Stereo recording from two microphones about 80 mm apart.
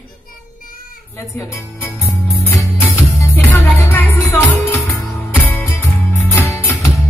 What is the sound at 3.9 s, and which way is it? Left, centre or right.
Music, left.